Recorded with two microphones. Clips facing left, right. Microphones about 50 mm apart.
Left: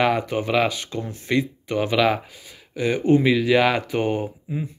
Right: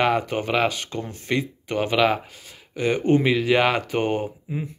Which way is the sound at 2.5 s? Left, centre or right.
Right.